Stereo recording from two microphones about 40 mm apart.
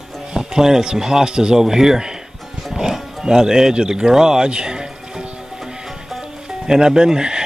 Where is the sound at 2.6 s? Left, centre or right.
Centre.